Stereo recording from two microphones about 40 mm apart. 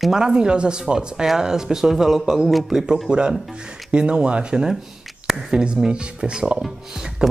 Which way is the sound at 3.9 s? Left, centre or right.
Right.